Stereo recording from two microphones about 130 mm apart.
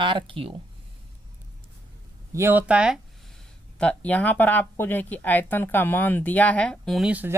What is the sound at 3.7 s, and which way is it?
Speech, 10° left (ahead or behind).